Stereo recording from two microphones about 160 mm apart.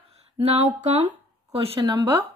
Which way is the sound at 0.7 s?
50° right (ahead or behind).